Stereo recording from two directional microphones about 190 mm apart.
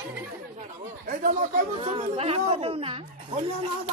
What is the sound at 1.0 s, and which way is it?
A woman's voice, 45° right (ahead or behind).